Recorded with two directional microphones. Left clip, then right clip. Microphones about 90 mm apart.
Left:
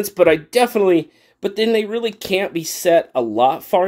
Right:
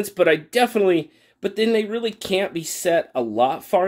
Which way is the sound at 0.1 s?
20° left (ahead or behind).